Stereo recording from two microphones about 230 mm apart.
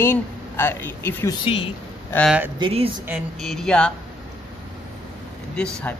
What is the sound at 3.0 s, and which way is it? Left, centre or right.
Speech, centre.